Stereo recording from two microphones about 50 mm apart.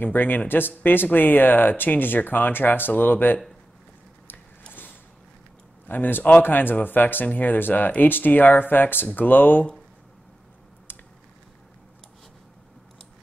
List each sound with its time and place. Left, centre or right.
0.0 s speech: left
4.3 s biting: left
5.9 s speech: left
10.9 s a sound: left